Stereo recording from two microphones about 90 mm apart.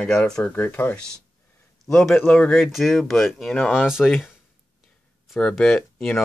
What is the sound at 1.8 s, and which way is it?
Speech, 5° left (ahead or behind).